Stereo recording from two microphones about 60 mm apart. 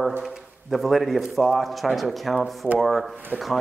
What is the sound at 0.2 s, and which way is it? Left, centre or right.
A man's voice, centre.